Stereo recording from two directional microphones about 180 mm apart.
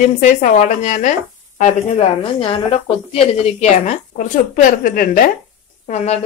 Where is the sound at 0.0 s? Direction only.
40° left (ahead or behind).